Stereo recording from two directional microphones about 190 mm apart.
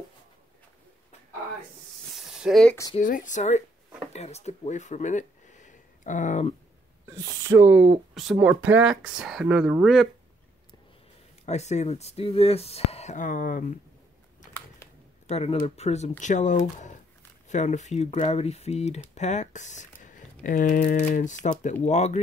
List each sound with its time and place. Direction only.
2.1 s a sound: centre (ahead or behind)
3.0 s speech: 45° left (ahead or behind)
7.1 s speech: 15° right (ahead or behind); by 10.0 s centre (ahead or behind)
11.4 s speech: 35° left (ahead or behind)
15.2 s speech: 35° left (ahead or behind)